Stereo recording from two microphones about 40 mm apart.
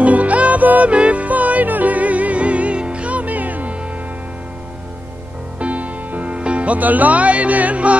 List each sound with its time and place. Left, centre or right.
0.0 s music: right
5.6 s music: right
6.8 s music: right